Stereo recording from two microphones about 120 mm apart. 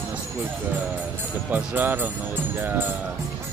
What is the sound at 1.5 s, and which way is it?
Speech, 15° right (ahead or behind).